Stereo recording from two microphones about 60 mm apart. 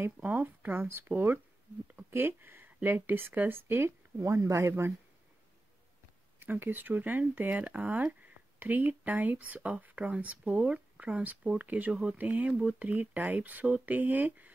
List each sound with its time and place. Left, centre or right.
0.2 s speech: right
6.4 s speech: right